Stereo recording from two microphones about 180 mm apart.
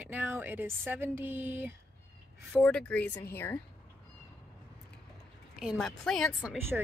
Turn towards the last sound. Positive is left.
turn(degrees=0)  # may be behind; listen again after turning